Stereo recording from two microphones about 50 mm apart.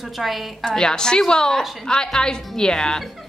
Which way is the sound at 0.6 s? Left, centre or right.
Centre.